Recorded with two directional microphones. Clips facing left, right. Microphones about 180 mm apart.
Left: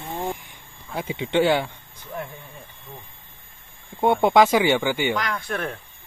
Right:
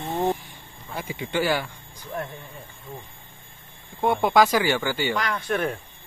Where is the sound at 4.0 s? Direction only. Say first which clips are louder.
Left 3 dB; 25° left (ahead or behind).